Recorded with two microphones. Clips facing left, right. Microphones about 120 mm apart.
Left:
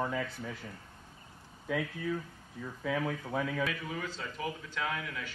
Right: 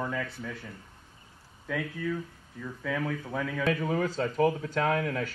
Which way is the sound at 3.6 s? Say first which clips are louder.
Right 8 dB; 45° right (ahead or behind).